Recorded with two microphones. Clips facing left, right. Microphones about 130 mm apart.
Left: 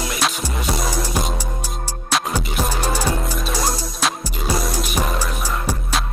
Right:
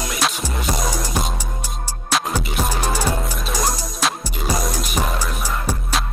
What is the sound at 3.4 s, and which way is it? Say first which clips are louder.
Music: even; centre (ahead or behind).